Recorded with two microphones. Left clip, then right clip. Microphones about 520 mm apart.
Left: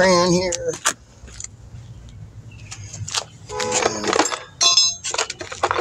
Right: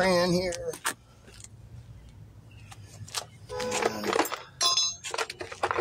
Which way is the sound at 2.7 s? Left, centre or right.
Right.